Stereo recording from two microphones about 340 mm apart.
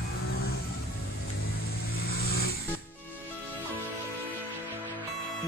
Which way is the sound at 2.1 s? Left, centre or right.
Left.